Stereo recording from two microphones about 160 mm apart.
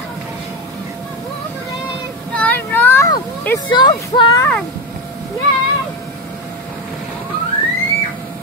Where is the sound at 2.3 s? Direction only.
10° left (ahead or behind).